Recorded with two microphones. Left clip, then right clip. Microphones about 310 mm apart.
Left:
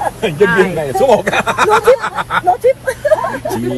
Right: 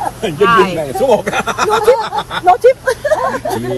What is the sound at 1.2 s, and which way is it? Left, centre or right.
Speech, centre.